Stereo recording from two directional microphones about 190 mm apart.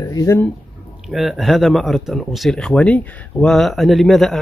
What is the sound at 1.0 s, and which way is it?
Speech, centre (ahead or behind).